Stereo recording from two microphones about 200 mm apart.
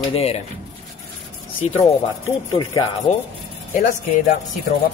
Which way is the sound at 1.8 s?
15° left (ahead or behind).